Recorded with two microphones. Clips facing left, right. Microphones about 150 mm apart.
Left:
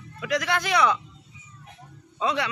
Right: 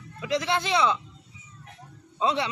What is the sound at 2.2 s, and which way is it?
Speech, 25° right (ahead or behind).